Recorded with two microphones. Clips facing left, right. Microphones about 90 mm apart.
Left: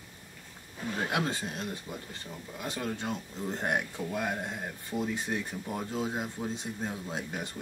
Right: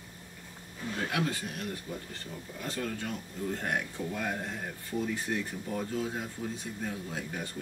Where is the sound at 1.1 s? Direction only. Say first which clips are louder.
Even; 25° left (ahead or behind).